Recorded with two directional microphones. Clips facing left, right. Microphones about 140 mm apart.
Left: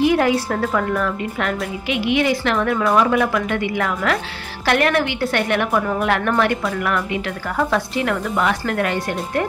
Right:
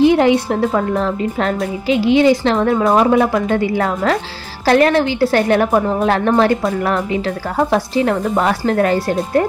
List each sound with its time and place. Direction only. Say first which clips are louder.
0.0 s a woman's voice: right 5 dB; 25° right (ahead or behind)